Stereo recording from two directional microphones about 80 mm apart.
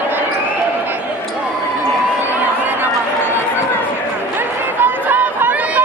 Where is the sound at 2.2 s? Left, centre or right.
Right.